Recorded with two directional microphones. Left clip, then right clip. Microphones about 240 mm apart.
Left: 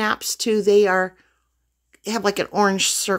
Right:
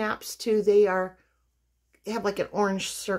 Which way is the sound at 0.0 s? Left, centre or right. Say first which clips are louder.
Left 7 dB; left.